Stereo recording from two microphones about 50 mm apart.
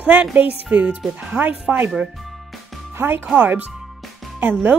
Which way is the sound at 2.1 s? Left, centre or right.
Centre.